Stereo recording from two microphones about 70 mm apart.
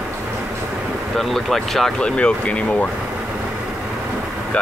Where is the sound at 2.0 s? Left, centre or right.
Centre.